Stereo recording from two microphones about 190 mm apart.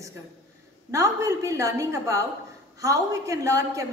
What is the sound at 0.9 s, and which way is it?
A woman's voice, 15° right (ahead or behind).